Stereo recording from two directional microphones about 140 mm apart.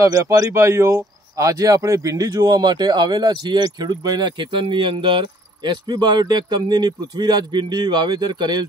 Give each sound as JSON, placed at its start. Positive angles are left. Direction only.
{"t": 0.0, "sound": "speech", "side_deg": -25}